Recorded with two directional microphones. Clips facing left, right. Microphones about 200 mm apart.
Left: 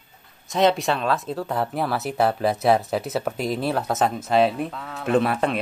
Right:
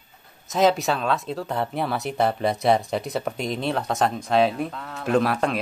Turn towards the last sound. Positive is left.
turn(degrees=0)  # may be behind; listen again after turning